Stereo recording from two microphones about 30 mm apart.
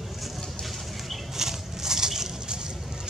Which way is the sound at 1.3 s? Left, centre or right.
Centre.